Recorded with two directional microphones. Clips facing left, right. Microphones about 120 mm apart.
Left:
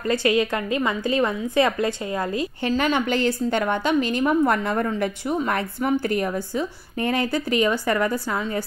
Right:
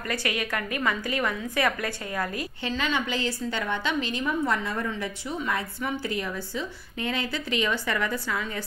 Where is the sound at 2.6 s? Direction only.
50° left (ahead or behind).